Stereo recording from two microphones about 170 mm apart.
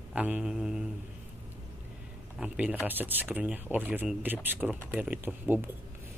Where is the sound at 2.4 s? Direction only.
10° right (ahead or behind).